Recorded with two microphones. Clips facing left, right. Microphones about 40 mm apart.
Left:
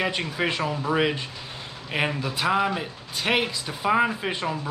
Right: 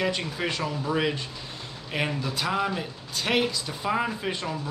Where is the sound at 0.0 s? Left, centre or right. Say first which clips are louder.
Left 2 dB; left.